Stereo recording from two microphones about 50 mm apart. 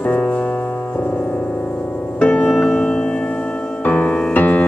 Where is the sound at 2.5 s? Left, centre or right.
Centre.